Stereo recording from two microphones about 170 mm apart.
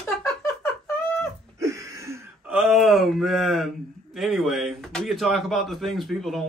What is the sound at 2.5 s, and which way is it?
Speech, centre (ahead or behind).